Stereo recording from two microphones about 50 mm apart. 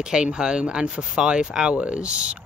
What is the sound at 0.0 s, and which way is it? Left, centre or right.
Speech, centre.